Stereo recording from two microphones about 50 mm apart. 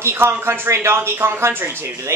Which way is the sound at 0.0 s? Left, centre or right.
Right.